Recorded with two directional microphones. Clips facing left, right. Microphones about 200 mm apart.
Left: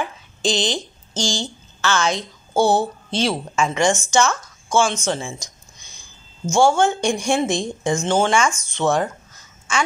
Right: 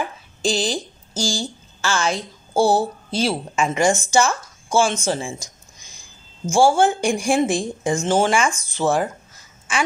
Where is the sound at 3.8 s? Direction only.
35° right (ahead or behind).